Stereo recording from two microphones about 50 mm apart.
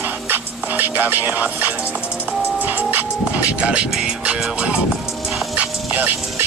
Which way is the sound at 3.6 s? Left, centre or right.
Right.